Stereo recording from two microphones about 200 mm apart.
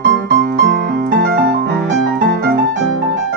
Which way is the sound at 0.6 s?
60° right (ahead or behind).